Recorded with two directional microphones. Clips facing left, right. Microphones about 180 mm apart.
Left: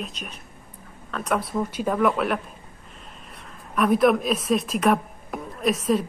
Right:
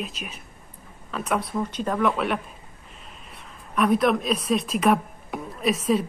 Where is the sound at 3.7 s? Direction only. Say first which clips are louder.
Left 2 dB; centre (ahead or behind).